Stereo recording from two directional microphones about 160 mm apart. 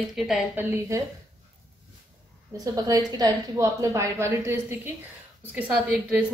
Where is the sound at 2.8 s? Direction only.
25° right (ahead or behind).